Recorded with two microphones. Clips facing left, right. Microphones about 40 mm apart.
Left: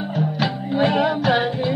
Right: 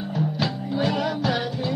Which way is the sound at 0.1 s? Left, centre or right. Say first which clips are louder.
Left 3 dB; centre.